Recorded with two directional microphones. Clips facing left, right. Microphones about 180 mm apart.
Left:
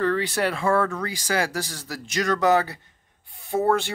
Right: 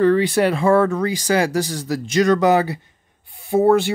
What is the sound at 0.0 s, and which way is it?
Speech, 15° right (ahead or behind).